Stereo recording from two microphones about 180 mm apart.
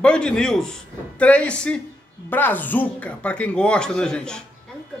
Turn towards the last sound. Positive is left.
turn(degrees=5)  # may be behind; listen again after turning